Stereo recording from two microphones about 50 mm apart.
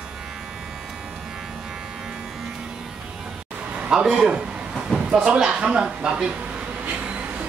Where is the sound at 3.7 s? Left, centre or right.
Right.